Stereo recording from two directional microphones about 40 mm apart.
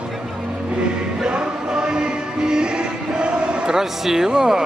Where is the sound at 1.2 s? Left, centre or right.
Right.